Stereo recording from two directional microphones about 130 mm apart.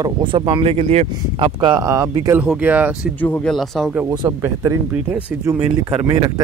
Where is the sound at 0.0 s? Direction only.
40° right (ahead or behind).